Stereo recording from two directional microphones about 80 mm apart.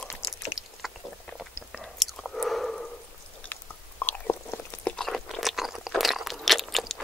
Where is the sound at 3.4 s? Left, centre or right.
Left.